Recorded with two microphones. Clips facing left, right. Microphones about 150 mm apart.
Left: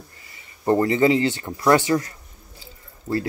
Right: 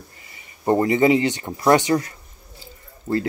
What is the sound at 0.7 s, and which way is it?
Speech, 15° right (ahead or behind).